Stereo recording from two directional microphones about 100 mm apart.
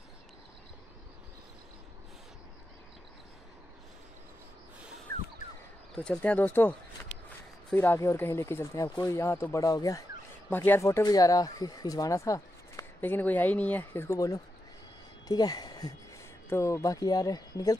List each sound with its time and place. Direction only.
5.9 s speech: 15° left (ahead or behind)
7.7 s speech: 20° left (ahead or behind)
10.5 s speech: 20° left (ahead or behind)
10.8 s speech: 35° left (ahead or behind)
13.0 s speech: 20° left (ahead or behind)
14.1 s speech: 35° left (ahead or behind)
16.4 s speech: 25° left (ahead or behind)